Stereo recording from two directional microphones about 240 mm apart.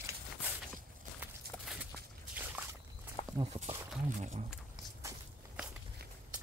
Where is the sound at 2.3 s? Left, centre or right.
Centre.